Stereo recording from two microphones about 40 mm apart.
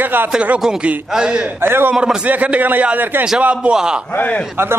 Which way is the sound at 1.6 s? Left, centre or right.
Right.